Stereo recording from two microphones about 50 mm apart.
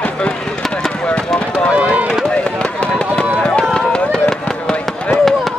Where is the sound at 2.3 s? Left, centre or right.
Left.